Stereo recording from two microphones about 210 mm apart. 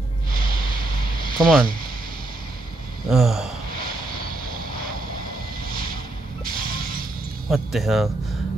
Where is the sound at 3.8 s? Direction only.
45° right (ahead or behind).